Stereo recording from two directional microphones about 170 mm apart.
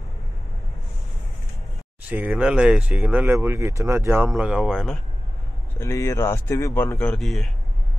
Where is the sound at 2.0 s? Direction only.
10° right (ahead or behind).